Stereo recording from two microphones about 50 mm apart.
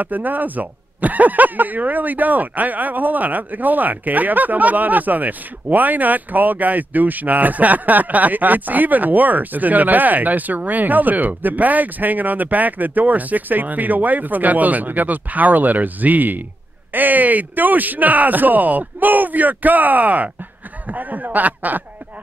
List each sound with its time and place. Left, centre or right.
0.0 s speech: right